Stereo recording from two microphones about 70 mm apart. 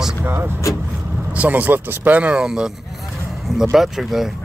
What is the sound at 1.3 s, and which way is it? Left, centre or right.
Speech, right.